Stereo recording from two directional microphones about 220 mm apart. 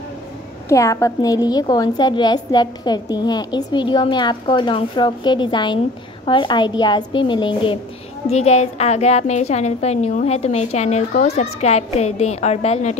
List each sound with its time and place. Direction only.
0.7 s a woman's voice: 15° left (ahead or behind); by 12.9 s 30° left (ahead or behind)